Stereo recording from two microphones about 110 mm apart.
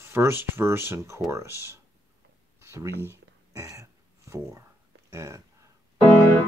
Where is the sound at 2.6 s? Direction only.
25° right (ahead or behind).